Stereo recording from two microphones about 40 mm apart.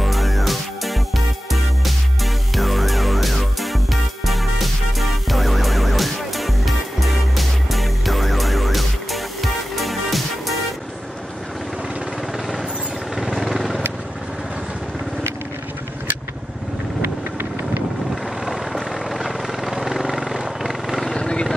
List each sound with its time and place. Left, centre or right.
0.0 s music: centre
13.1 s vehicle: centre
18.4 s vehicle: centre
21.1 s vehicle: left